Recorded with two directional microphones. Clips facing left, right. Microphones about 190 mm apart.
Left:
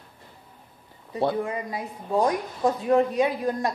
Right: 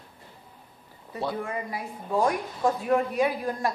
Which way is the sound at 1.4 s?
20° left (ahead or behind).